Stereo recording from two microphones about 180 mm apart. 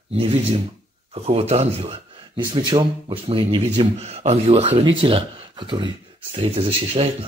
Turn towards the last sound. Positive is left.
turn(degrees=-30)  # may be behind; listen again after turning